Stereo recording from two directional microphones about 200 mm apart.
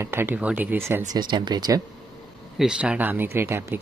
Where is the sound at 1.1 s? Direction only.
20° right (ahead or behind).